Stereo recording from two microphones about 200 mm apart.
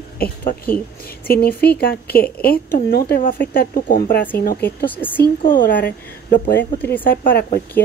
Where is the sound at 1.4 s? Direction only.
50° left (ahead or behind).